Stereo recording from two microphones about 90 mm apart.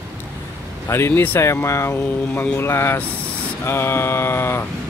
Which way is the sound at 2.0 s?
20° left (ahead or behind).